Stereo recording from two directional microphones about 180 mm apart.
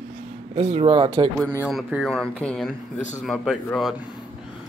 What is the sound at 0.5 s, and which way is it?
Speech, 35° right (ahead or behind).